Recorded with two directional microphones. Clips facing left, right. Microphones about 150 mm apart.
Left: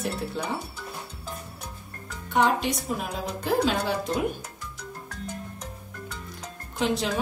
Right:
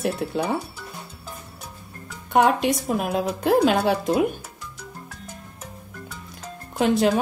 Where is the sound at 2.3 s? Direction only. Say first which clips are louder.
Right 5 dB; 60° right (ahead or behind).